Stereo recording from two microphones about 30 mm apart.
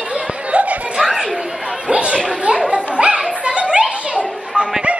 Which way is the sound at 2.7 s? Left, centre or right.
Right.